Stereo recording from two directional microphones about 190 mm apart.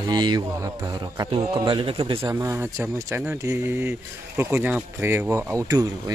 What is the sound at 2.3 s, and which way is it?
Speech, 15° right (ahead or behind).